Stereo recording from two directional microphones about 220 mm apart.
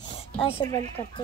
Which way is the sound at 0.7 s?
30° right (ahead or behind).